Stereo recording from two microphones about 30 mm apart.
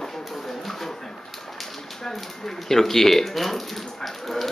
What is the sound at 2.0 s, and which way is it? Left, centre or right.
Speech, centre.